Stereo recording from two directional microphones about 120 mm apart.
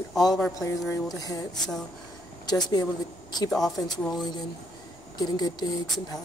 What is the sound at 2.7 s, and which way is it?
Speech, 35° left (ahead or behind).